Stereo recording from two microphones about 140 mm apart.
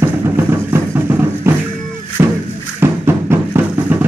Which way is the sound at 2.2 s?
15° right (ahead or behind).